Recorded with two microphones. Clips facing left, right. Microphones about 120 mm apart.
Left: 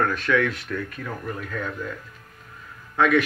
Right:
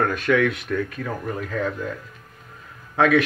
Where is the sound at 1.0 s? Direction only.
30° right (ahead or behind).